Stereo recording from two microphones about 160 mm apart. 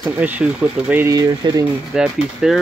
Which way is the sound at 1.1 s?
25° right (ahead or behind).